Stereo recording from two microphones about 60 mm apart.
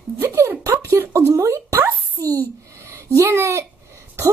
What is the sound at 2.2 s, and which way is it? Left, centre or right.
A child's voice, right.